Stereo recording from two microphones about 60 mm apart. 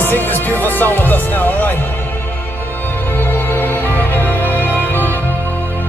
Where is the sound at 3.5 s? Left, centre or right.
Left.